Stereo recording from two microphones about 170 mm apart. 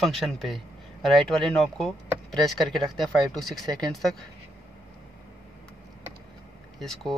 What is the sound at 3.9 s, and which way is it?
Speech, centre (ahead or behind).